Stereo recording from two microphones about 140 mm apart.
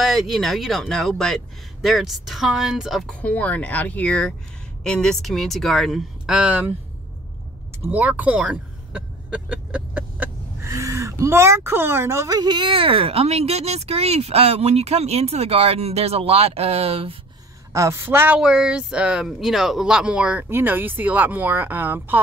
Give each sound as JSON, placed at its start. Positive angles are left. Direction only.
{"t": 0.0, "sound": "speech", "side_deg": 0}
{"t": 7.9, "sound": "speech", "side_deg": -10}
{"t": 17.7, "sound": "speech", "side_deg": -20}